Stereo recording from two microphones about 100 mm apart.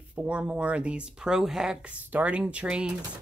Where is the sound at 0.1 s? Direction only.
10° right (ahead or behind).